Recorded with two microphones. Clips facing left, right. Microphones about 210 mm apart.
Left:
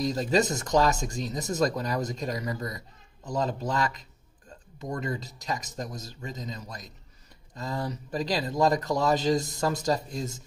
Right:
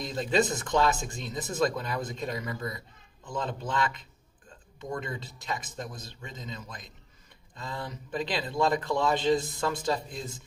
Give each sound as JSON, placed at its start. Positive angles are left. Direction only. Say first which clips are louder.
{"t": 0.0, "sound": "speech", "louder": "left 2 dB", "side_deg": 40}